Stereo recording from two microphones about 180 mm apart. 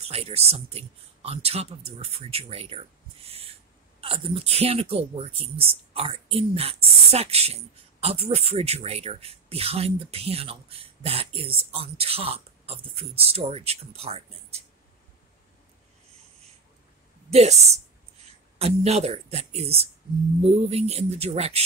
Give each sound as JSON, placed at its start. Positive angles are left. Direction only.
{"t": 0.0, "sound": "speech", "side_deg": -35}
{"t": 4.0, "sound": "speech", "side_deg": -30}
{"t": 17.3, "sound": "speech", "side_deg": -35}